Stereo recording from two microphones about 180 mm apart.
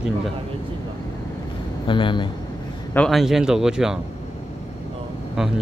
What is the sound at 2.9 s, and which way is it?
Speech, 5° left (ahead or behind).